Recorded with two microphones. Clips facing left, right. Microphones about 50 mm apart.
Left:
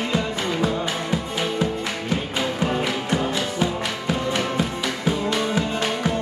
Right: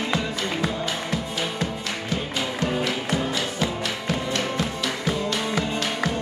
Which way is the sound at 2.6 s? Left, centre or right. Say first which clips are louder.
Left 1 dB; centre.